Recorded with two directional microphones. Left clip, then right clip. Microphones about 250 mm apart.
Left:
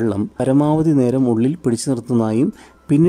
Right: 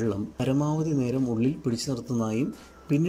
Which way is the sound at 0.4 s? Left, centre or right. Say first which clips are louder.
Left 13 dB; left.